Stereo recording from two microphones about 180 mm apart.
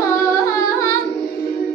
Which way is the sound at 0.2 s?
15° left (ahead or behind).